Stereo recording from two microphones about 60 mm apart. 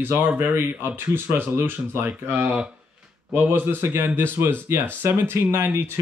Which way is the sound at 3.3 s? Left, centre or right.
Right.